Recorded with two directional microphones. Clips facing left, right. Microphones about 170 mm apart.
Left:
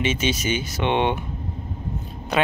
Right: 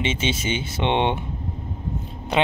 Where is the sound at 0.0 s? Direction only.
25° right (ahead or behind).